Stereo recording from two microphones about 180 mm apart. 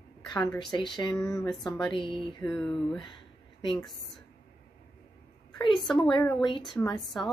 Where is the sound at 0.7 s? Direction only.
25° left (ahead or behind).